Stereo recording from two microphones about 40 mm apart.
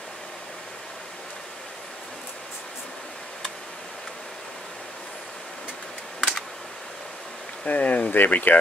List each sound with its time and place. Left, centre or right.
7.6 s speech: left